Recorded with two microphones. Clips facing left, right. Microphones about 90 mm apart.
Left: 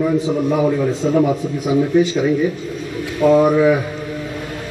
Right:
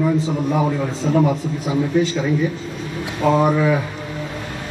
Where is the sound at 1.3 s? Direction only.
20° left (ahead or behind).